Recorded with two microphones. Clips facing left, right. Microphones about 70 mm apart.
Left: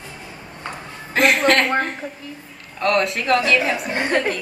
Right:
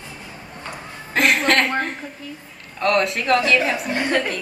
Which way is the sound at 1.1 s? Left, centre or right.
Centre.